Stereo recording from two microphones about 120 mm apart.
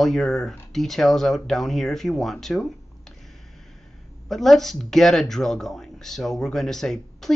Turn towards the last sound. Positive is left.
turn(degrees=5)  # may be behind; listen again after turning